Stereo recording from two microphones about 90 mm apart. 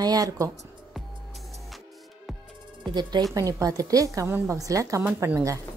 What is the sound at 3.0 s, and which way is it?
Speech, 55° right (ahead or behind).